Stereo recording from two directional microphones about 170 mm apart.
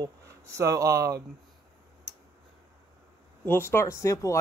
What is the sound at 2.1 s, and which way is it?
Tick, centre (ahead or behind).